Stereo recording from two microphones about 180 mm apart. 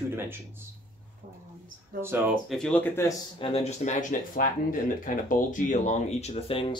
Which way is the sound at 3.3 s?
30° left (ahead or behind).